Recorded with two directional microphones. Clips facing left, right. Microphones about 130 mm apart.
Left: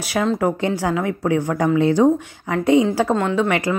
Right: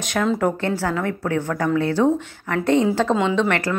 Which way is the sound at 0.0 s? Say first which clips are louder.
Left 1 dB; 5° left (ahead or behind).